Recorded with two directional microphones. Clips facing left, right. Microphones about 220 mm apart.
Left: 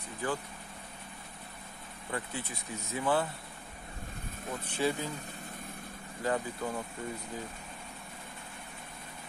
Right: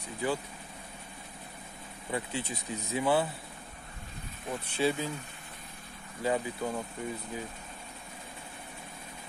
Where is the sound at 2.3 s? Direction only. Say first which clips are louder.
Right 4 dB; 15° right (ahead or behind).